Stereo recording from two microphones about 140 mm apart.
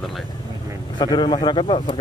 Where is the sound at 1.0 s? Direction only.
30° left (ahead or behind).